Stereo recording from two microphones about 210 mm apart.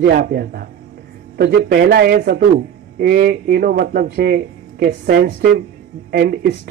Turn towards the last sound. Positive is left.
turn(degrees=-50)  # may be behind; listen again after turning